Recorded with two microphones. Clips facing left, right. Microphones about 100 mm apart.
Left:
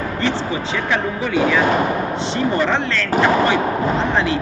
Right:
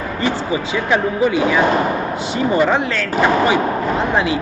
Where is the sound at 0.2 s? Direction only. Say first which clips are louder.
Right 3 dB; 10° right (ahead or behind).